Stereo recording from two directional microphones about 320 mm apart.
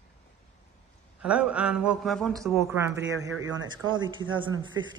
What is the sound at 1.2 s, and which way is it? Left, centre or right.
A woman's voice, centre.